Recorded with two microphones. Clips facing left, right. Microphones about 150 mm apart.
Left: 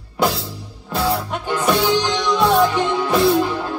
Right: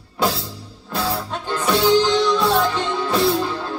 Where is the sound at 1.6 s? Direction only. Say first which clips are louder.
Right 2 dB; 15° left (ahead or behind).